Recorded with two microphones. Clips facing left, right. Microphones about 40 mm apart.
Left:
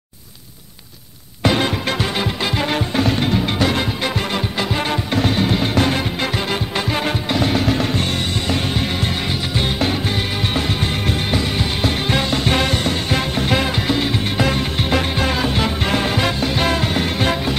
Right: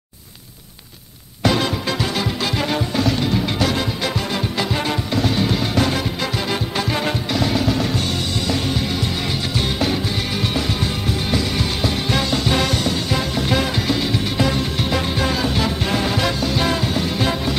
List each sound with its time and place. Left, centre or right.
1.4 s music: left
7.2 s music: left
10.4 s music: left
12.1 s music: left
12.4 s music: left
14.4 s music: left